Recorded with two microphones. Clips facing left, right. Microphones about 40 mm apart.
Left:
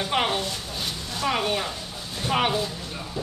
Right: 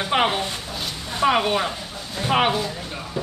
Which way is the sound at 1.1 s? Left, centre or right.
Right.